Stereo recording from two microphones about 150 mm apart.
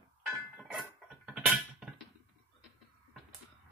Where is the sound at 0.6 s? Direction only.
5° right (ahead or behind).